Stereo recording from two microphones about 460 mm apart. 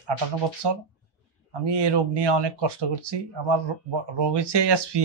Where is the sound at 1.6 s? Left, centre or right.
Right.